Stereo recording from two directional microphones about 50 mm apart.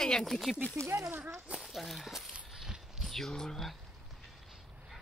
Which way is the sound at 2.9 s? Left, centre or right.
Centre.